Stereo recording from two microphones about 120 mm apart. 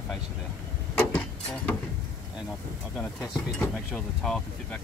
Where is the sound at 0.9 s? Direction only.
15° left (ahead or behind).